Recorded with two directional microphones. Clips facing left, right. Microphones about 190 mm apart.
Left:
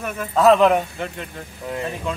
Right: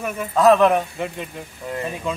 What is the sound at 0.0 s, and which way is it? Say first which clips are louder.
A man's voice: even; 5° right (ahead or behind).